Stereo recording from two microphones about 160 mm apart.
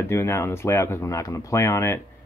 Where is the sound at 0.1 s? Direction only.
15° left (ahead or behind).